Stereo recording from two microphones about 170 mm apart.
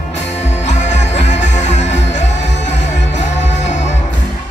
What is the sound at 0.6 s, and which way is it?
Music, 40° left (ahead or behind).